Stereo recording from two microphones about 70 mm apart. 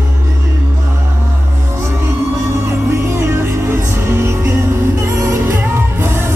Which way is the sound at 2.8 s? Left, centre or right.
Right.